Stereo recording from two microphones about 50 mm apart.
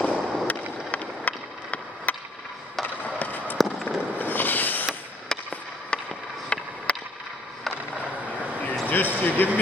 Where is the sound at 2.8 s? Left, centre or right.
Left.